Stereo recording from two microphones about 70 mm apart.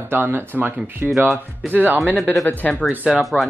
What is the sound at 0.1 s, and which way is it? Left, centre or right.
Speech, right.